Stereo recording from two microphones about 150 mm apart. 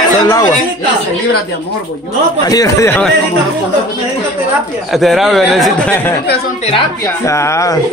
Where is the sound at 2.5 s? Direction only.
20° left (ahead or behind).